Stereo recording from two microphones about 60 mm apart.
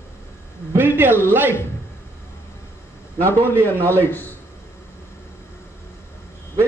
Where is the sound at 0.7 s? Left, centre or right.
Right.